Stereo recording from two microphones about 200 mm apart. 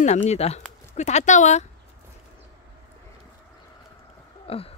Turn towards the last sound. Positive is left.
turn(degrees=30)  # may be behind; listen again after turning